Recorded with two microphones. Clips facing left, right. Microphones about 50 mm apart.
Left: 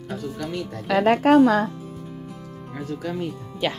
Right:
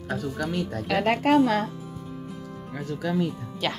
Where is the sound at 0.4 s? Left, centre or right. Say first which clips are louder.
Right 1 dB; right.